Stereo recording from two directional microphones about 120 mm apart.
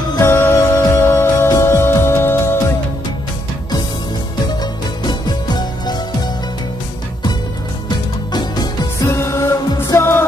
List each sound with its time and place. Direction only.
0.2 s music: 20° left (ahead or behind)
5.0 s music: 35° left (ahead or behind)
8.3 s music: 35° left (ahead or behind)
9.0 s music: 20° left (ahead or behind)